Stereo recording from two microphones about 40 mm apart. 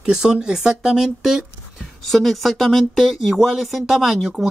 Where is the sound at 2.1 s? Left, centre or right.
Centre.